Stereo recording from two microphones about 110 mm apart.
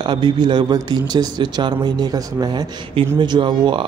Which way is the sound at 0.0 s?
45° right (ahead or behind).